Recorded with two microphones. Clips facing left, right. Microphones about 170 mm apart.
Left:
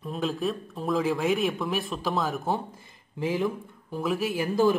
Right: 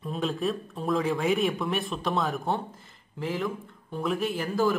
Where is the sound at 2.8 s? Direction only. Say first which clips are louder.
Left 4 dB; 15° left (ahead or behind).